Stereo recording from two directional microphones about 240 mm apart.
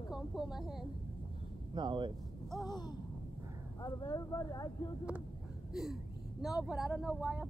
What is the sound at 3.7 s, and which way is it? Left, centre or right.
Speech, centre.